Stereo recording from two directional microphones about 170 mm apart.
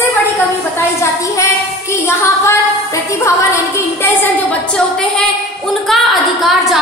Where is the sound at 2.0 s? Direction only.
15° left (ahead or behind).